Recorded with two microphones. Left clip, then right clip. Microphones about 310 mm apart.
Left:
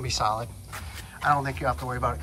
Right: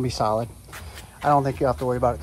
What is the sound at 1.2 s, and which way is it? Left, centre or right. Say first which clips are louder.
Speech: right 5 dB; centre.